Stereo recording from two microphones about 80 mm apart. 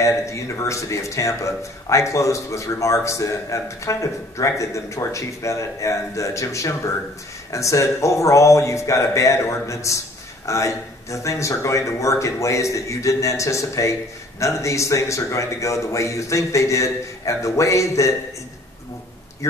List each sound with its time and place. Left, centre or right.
0.0 s speech: left